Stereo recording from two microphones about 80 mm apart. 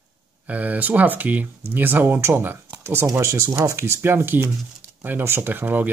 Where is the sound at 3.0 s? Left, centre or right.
Right.